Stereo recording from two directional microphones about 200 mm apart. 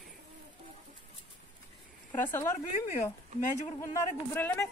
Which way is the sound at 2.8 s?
40° left (ahead or behind).